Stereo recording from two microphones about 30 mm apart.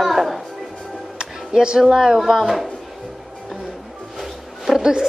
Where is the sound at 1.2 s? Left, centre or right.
Right.